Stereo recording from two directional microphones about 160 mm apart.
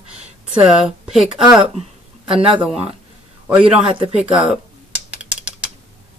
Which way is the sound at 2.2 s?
35° right (ahead or behind).